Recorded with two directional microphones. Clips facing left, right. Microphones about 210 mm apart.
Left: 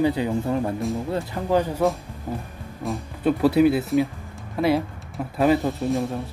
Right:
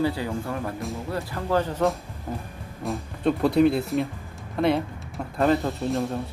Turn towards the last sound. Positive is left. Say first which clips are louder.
# left 2 dB
turn(degrees=0)  # may be behind; listen again after turning